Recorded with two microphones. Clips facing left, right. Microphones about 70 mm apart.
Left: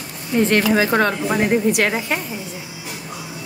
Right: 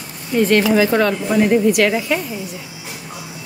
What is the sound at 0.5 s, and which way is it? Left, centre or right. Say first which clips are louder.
A woman's voice: right 4 dB; left.